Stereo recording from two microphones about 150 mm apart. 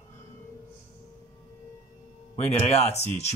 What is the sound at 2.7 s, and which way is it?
Speech, 45° left (ahead or behind).